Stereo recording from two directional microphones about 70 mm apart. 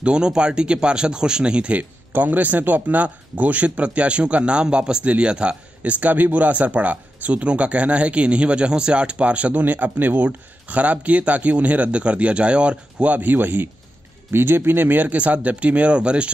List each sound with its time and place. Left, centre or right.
0.0 s speech: centre